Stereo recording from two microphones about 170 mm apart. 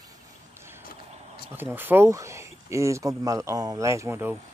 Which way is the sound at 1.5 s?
10° right (ahead or behind).